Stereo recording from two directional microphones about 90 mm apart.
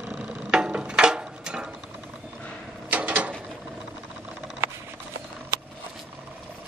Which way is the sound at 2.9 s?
20° right (ahead or behind).